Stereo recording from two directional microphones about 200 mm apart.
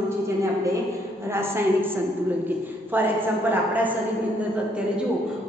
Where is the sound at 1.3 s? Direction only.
10° right (ahead or behind).